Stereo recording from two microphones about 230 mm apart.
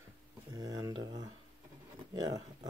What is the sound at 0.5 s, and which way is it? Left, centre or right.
Speech, centre.